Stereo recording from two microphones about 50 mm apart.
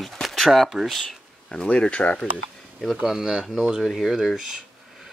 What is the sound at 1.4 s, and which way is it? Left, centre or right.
Speech, left.